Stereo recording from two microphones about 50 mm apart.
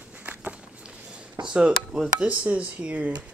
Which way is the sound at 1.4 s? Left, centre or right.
Centre.